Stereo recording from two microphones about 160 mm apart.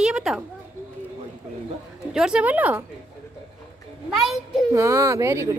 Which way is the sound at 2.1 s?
5° right (ahead or behind).